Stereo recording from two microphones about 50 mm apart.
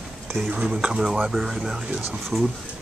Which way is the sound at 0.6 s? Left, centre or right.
Centre.